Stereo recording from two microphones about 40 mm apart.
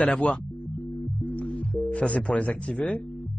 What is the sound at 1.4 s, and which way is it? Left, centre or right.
Music, left.